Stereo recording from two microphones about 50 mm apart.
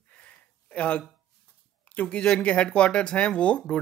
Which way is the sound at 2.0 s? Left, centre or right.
Left.